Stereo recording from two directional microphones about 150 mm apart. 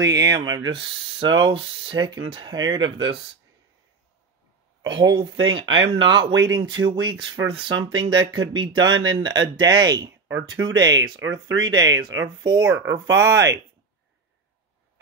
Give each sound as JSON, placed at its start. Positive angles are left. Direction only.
{"t": 0.0, "sound": "speech", "side_deg": -25}
{"t": 4.8, "sound": "speech", "side_deg": -35}
{"t": 12.6, "sound": "speech", "side_deg": -15}